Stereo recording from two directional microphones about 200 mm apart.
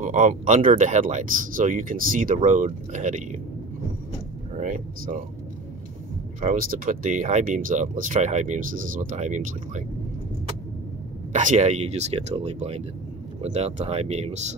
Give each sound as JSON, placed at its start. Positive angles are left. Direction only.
{"t": 0.0, "sound": "speech", "side_deg": -40}
{"t": 4.6, "sound": "speech", "side_deg": -40}
{"t": 6.4, "sound": "speech", "side_deg": -45}
{"t": 11.3, "sound": "speech", "side_deg": -35}